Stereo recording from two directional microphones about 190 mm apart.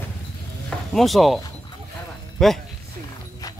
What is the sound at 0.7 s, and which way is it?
Speech, centre (ahead or behind).